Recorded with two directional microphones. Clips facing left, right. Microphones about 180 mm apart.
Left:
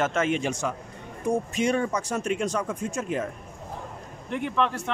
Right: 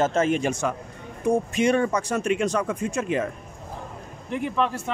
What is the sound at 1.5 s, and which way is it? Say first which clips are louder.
Speech: right 4 dB; 70° right (ahead or behind).